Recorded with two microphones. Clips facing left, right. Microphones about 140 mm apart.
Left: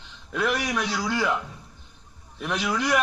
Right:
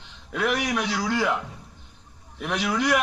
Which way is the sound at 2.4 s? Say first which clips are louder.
Right 1 dB; 15° right (ahead or behind).